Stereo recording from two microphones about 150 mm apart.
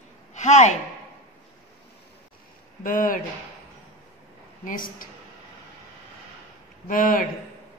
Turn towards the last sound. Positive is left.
turn(degrees=65)  # may be behind; listen again after turning